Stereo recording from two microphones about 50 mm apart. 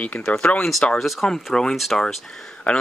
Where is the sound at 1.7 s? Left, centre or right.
Centre.